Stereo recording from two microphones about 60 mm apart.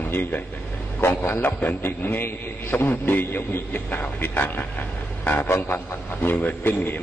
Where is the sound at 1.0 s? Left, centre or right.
Left.